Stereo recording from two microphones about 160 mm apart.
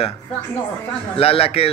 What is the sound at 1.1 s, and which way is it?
Speech, 35° left (ahead or behind).